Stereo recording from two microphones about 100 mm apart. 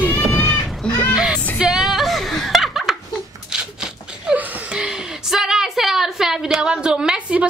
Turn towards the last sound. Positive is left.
turn(degrees=-10)  # may be behind; listen again after turning